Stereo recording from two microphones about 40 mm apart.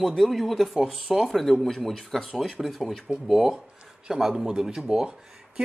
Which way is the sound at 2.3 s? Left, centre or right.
Centre.